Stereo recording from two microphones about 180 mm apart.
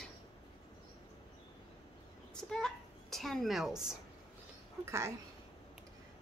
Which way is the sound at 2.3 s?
5° left (ahead or behind).